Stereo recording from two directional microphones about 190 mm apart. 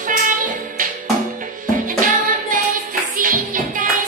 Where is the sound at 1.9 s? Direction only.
45° right (ahead or behind).